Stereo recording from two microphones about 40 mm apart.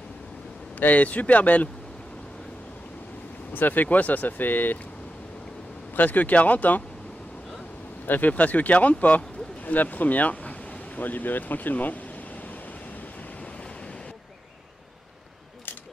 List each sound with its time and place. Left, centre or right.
0.7 s speech: left
3.5 s speech: left
5.9 s speech: left
8.1 s speech: left